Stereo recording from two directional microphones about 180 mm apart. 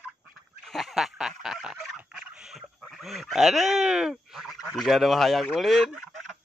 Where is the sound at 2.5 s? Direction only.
Centre (ahead or behind).